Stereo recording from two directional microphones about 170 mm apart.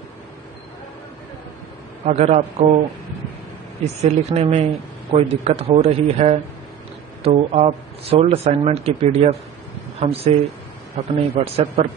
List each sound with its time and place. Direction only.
2.0 s speech: 40° right (ahead or behind)
3.8 s speech: 40° right (ahead or behind)
7.5 s speech: 35° right (ahead or behind)